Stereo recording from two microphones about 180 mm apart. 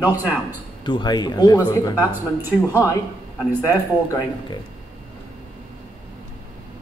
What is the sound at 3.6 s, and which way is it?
Speech, 20° left (ahead or behind).